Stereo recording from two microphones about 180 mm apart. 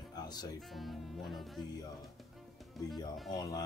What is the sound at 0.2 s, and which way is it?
Music, 20° left (ahead or behind).